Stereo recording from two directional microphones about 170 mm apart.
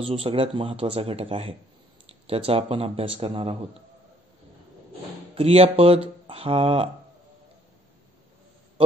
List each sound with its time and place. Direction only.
0.0 s speech: 35° right (ahead or behind)
5.3 s speech: 35° right (ahead or behind)